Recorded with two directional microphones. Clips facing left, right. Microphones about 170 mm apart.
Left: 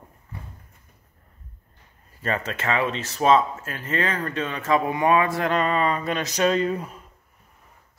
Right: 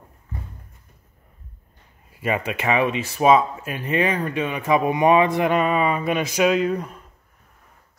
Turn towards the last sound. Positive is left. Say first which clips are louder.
# right 3 dB
turn(degrees=5)  # may be behind; listen again after turning